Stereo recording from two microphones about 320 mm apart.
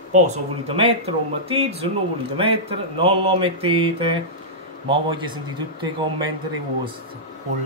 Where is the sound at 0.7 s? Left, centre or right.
Centre.